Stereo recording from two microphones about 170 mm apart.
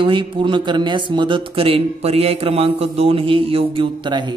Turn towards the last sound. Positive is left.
turn(degrees=-25)  # may be behind; listen again after turning